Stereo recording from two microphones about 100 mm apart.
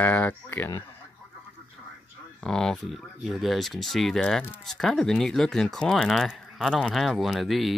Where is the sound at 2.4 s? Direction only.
5° left (ahead or behind).